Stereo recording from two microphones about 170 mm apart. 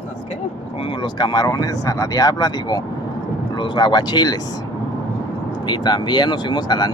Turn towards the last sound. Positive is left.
turn(degrees=25)  # may be behind; listen again after turning